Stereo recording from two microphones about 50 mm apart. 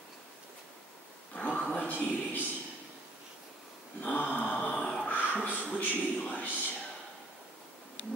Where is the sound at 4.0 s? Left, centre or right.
Left.